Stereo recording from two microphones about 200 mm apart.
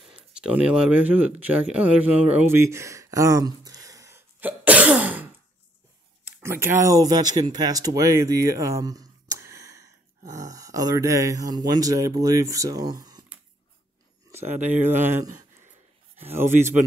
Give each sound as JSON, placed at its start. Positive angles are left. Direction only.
{"t": 0.0, "sound": "speech", "side_deg": -5}
{"t": 2.4, "sound": "a sound", "side_deg": -10}
{"t": 6.3, "sound": "speech", "side_deg": -10}
{"t": 14.8, "sound": "speech", "side_deg": -10}
{"t": 16.5, "sound": "a man's voice", "side_deg": -40}